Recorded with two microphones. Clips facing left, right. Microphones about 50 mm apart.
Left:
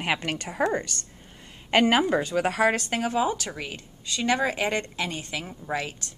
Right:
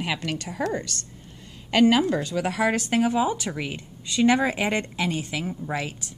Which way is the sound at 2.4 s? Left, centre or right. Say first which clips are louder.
Left 1 dB; centre.